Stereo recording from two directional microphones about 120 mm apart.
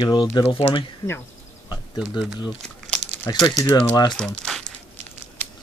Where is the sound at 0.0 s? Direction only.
40° left (ahead or behind).